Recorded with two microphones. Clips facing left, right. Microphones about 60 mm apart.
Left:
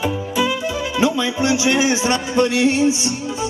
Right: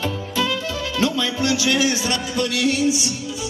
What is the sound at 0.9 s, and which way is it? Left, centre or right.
A man's voice, left.